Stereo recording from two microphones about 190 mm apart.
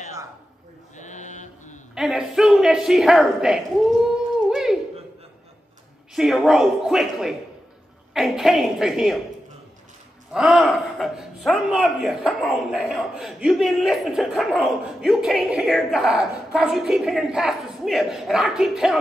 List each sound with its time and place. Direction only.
0.9 s mantra: 40° left (ahead or behind)
2.0 s a man's voice: centre (ahead or behind)
6.1 s a man's voice: centre (ahead or behind)
10.3 s a man's voice: 5° right (ahead or behind)